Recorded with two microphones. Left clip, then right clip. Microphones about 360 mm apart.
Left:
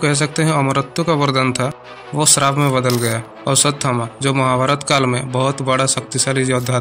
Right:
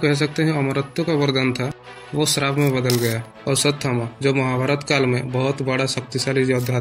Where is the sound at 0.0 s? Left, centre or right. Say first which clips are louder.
Left 2 dB; left.